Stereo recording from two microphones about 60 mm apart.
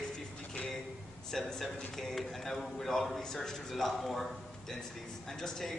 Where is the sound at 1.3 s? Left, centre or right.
Centre.